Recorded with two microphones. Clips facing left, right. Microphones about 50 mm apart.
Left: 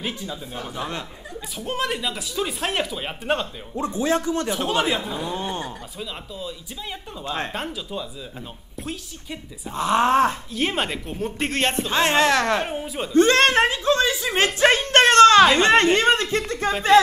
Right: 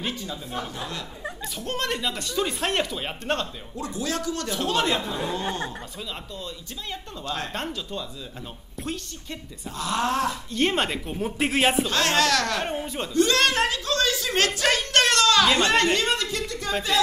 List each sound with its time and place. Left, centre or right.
0.0 s speech: centre
0.7 s a man's voice: left
1.6 s speech: centre
3.7 s a man's voice: left; by 9.4 s centre
9.7 s a man's voice: left
10.5 s speech: centre
11.9 s a man's voice: left
12.6 s speech: centre
13.1 s speech: left